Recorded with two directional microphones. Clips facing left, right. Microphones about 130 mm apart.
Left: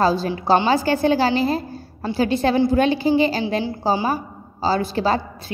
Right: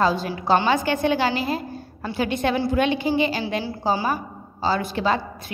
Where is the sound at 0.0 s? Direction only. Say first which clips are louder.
Left 3 dB; 35° left (ahead or behind).